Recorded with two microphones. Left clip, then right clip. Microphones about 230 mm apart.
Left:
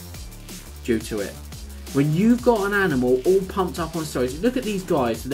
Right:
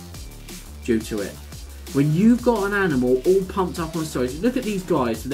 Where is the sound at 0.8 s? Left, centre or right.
Centre.